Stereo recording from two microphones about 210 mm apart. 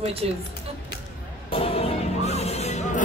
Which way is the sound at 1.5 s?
30° left (ahead or behind).